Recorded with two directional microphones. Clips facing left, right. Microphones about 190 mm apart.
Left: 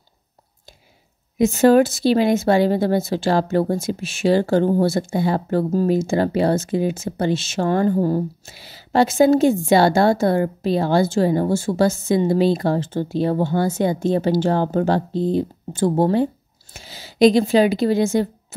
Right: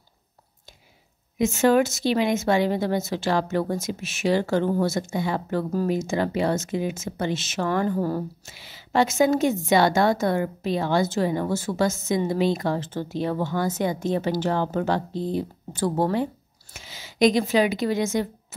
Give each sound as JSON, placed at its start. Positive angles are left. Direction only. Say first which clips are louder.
{"t": 1.4, "sound": "a woman's voice", "louder": "left 6 dB", "side_deg": 35}